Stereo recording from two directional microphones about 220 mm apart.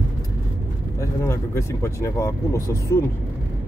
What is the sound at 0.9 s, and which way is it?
Speech, 10° left (ahead or behind).